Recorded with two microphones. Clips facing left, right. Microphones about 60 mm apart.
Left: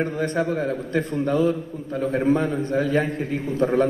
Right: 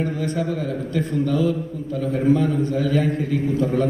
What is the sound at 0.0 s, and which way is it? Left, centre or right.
A man's voice, left.